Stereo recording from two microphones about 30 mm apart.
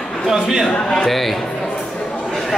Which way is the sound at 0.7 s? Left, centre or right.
Left.